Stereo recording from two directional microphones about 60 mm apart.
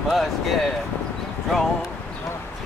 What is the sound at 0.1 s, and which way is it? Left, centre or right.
Speech, centre.